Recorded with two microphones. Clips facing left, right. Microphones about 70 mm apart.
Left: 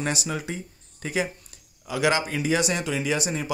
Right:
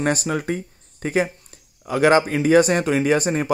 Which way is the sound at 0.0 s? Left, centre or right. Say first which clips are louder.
Right 7 dB; right.